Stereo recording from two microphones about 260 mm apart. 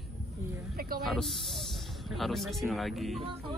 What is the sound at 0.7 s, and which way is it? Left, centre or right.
Speech, right.